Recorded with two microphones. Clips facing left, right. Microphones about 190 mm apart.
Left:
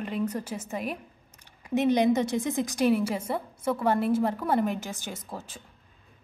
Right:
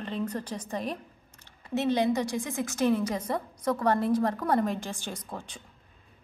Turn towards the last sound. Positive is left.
turn(degrees=5)  # may be behind; listen again after turning